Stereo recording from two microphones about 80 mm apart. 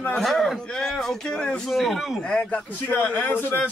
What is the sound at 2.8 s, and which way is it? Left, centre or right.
Speech, left.